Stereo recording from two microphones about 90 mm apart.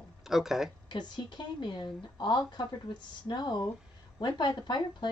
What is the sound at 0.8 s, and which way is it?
A woman's voice, 55° left (ahead or behind).